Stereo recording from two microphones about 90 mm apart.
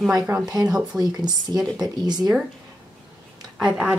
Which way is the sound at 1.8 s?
50° right (ahead or behind).